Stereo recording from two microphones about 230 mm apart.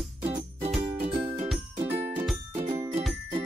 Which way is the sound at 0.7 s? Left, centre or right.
Right.